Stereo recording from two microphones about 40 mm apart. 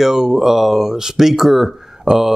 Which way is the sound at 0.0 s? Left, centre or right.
Centre.